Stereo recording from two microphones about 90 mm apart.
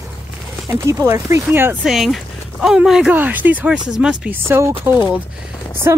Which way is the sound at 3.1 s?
20° right (ahead or behind).